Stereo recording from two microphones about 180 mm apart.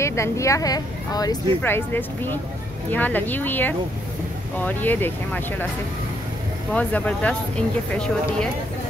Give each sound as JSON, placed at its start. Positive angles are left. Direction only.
{"t": 0.0, "sound": "speech", "side_deg": 15}
{"t": 6.7, "sound": "speech", "side_deg": 10}